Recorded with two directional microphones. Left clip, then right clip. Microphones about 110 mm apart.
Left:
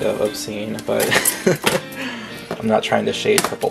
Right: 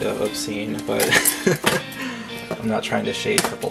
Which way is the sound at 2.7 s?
15° left (ahead or behind).